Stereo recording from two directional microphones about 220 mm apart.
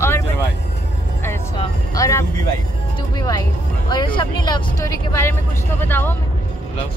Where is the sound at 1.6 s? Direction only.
15° left (ahead or behind).